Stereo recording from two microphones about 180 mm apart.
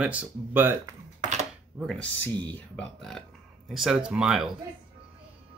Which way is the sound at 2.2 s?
10° left (ahead or behind).